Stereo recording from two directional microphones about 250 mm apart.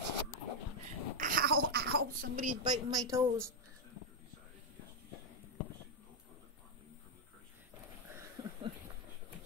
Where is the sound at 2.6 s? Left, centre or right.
Centre.